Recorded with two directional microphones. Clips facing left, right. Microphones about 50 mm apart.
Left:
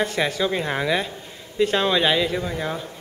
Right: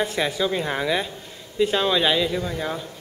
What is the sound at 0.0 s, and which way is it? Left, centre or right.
A woman's voice, centre.